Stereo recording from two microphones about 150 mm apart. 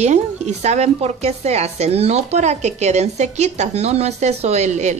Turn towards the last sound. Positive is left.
turn(degrees=-50)  # may be behind; listen again after turning